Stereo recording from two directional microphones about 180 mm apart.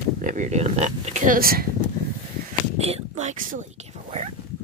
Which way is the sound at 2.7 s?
35° right (ahead or behind).